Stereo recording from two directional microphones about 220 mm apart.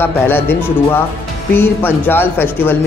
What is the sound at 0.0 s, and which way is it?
Speech, 10° left (ahead or behind).